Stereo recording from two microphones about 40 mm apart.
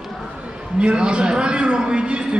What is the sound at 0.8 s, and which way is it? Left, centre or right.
A man's voice, right.